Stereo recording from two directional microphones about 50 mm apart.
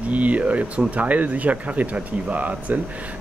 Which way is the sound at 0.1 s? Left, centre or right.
Right.